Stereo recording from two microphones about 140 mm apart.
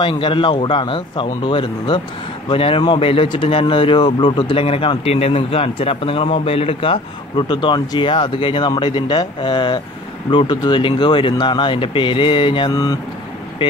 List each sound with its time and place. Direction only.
0.0 s speech: 35° left (ahead or behind)
12.7 s speech: 25° left (ahead or behind)